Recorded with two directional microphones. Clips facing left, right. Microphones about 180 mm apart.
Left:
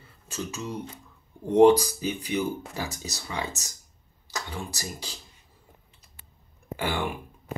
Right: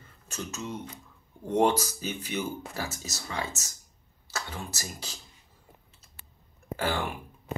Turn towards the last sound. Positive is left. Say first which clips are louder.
# left 1 dB
turn(degrees=15)  # may be behind; listen again after turning